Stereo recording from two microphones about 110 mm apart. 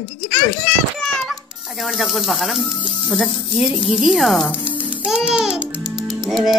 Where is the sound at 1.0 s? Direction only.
Centre (ahead or behind).